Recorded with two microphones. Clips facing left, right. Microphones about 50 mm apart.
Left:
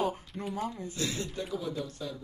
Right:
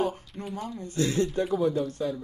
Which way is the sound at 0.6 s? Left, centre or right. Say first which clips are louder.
Left 1 dB; centre.